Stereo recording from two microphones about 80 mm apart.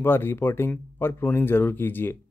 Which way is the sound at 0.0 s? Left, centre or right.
Left.